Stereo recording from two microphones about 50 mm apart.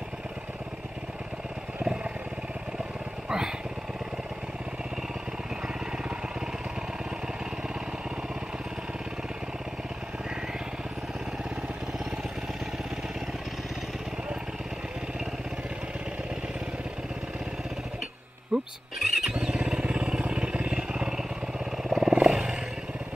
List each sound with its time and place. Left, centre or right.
3.3 s vehicle: centre
18.5 s a sound: centre
19.0 s motorcycle: centre
19.3 s vehicle: right
21.8 s motorcycle: centre
22.1 s roar: centre